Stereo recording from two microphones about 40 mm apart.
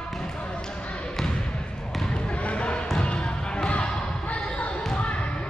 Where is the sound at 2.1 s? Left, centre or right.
Left.